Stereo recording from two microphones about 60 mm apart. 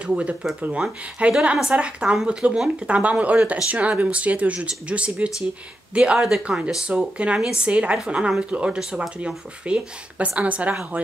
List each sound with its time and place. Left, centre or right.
0.0 s speech: centre
6.7 s speech: centre
7.6 s speech: right
9.2 s speech: centre